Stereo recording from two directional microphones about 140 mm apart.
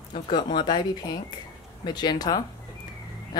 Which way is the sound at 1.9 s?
30° left (ahead or behind).